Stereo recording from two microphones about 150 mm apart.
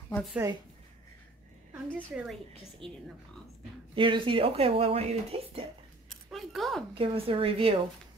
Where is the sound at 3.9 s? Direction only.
35° right (ahead or behind).